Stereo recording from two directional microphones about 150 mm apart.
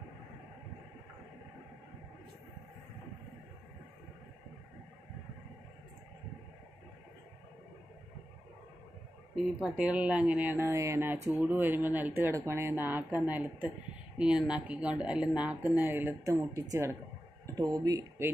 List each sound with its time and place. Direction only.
9.3 s speech: 5° right (ahead or behind)